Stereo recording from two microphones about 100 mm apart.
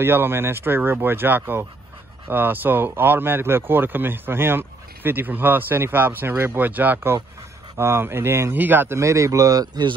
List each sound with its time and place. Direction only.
0.0 s speech: 20° right (ahead or behind); by 9.9 s 45° right (ahead or behind)